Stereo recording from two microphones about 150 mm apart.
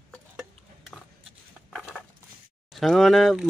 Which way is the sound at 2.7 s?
Centre (ahead or behind).